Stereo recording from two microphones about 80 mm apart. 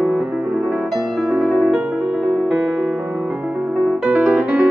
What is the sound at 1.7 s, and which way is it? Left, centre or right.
Music, centre.